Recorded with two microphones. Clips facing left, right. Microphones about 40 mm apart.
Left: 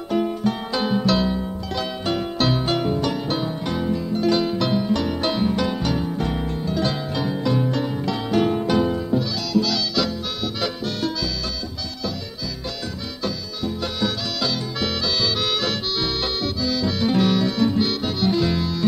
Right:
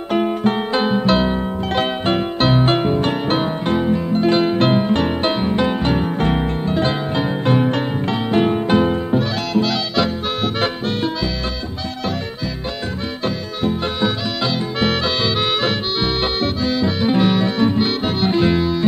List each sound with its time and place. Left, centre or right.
0.1 s music: right
0.8 s music: right
8.3 s music: right
14.0 s music: right